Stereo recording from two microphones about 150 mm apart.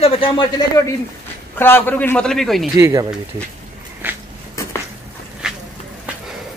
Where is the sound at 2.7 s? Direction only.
20° right (ahead or behind).